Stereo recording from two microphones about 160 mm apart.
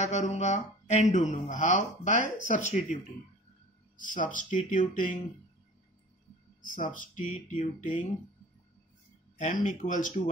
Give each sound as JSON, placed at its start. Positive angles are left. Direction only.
{"t": 0.0, "sound": "speech", "side_deg": 45}
{"t": 6.6, "sound": "speech", "side_deg": 55}
{"t": 9.4, "sound": "speech", "side_deg": 50}